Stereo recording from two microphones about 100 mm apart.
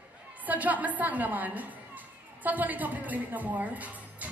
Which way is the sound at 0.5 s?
15° right (ahead or behind).